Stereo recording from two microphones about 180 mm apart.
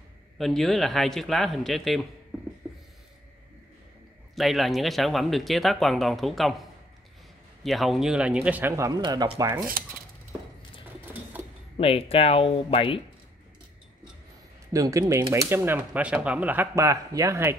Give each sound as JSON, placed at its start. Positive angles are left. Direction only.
{"t": 0.4, "sound": "speech", "side_deg": 0}
{"t": 2.6, "sound": "a sound", "side_deg": -15}
{"t": 4.4, "sound": "speech", "side_deg": 0}
{"t": 7.6, "sound": "speech", "side_deg": 0}
{"t": 11.8, "sound": "speech", "side_deg": 30}
{"t": 14.7, "sound": "speech", "side_deg": -20}